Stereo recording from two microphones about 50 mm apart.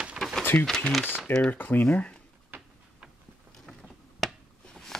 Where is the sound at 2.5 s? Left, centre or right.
Right.